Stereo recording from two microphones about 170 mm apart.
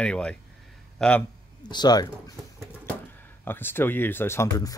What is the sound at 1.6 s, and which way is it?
Speech, 25° left (ahead or behind).